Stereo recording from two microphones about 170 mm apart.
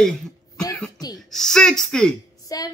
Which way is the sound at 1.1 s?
Centre (ahead or behind).